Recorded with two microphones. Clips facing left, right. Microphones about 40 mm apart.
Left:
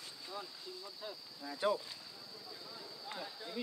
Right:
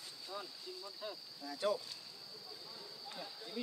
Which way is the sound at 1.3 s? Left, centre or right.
Left.